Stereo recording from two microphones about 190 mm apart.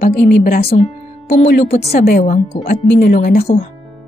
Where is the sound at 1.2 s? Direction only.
45° left (ahead or behind).